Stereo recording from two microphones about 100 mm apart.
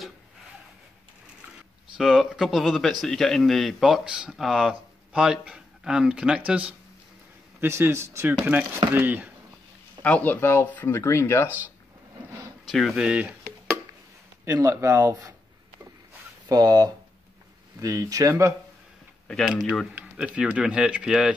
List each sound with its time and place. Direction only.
2.0 s a man's voice: 5° right (ahead or behind)
7.6 s speech: 25° right (ahead or behind)
10.0 s speech: 15° left (ahead or behind)
12.3 s a sound: 30° right (ahead or behind)
12.6 s a sound: centre (ahead or behind)
14.4 s speech: 30° right (ahead or behind)
16.4 s speech: 40° right (ahead or behind)
19.2 s a man's voice: 5° left (ahead or behind)